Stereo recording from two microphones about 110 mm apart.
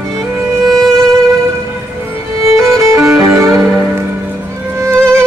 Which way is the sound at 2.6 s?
25° right (ahead or behind).